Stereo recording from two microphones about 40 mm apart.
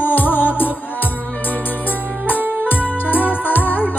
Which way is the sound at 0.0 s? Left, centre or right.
Left.